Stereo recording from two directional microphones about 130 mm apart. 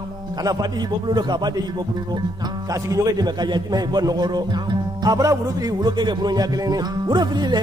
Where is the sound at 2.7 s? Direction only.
25° right (ahead or behind).